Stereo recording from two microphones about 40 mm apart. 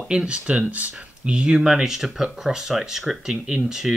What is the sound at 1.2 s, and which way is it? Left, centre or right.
Speech, right.